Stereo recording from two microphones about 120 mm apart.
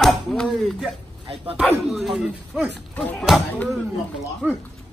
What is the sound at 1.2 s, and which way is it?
Speech, 50° right (ahead or behind).